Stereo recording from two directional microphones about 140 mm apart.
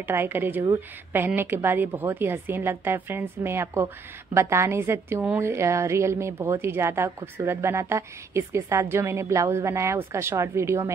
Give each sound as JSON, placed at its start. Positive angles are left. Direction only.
{"t": 0.0, "sound": "a woman's voice", "side_deg": -15}